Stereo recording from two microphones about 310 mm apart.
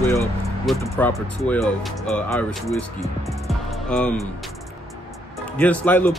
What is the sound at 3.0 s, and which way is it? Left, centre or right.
Music, centre.